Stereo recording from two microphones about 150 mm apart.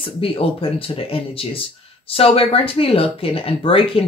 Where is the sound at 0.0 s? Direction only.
35° left (ahead or behind).